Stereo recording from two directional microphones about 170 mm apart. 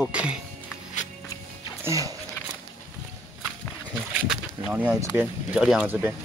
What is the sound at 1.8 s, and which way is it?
Speech, 20° right (ahead or behind).